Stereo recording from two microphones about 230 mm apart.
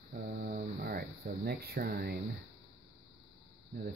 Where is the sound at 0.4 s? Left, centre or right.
Right.